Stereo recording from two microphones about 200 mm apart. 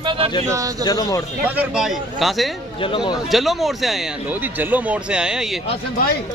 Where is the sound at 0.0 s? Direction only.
25° right (ahead or behind).